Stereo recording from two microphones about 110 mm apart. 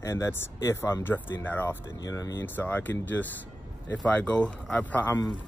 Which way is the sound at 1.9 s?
30° left (ahead or behind).